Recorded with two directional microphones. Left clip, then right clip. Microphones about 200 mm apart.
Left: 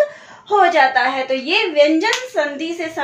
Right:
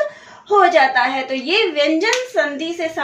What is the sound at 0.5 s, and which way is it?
A woman's voice, 5° right (ahead or behind).